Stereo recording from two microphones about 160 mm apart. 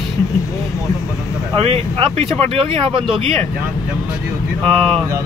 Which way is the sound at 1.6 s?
35° right (ahead or behind).